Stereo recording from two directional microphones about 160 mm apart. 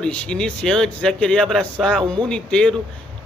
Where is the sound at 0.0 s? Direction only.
5° left (ahead or behind).